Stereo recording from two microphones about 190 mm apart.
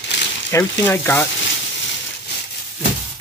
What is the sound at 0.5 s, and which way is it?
Speech, 10° left (ahead or behind).